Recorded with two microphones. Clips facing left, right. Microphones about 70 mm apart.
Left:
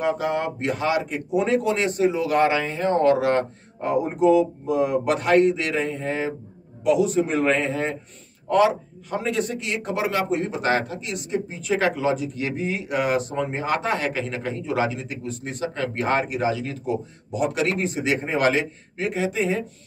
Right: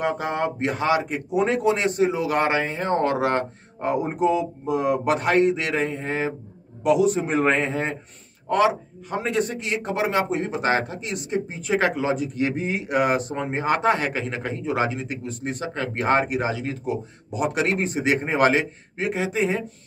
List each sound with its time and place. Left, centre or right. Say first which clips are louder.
0.0 s a man's voice: left 1 dB; right
4.6 s speech: left 1 dB; right
5.1 s a man's voice: left 2 dB; right
9.1 s a man's voice: right 1 dB; right